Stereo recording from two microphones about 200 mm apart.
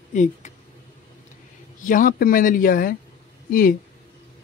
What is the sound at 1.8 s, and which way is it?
Speech, 40° left (ahead or behind).